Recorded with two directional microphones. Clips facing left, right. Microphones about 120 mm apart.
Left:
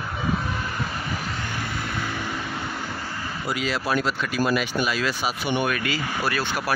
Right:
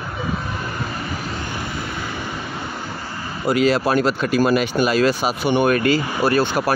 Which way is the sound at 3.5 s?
60° right (ahead or behind).